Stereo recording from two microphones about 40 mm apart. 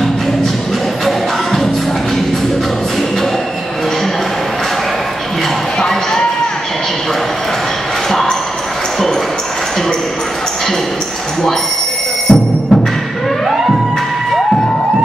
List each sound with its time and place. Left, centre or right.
1.0 s music: centre
8.1 s a sound: centre
12.3 s music: left